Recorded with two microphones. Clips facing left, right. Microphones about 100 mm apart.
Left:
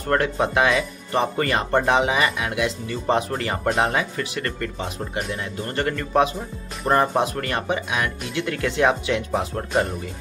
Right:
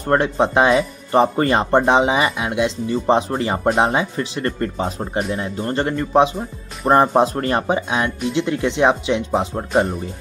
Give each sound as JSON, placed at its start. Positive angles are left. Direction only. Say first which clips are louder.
{"t": 0.1, "sound": "speech", "louder": "right 4 dB", "side_deg": -25}